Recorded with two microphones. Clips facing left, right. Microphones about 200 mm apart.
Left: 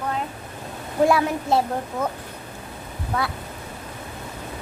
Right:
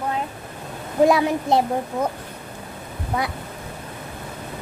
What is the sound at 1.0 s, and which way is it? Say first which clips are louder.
A child's voice: right 2 dB; 20° right (ahead or behind).